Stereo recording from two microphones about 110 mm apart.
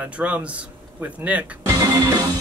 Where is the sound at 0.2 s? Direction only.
10° right (ahead or behind).